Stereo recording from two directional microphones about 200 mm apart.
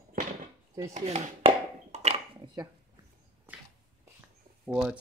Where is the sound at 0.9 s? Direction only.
35° right (ahead or behind).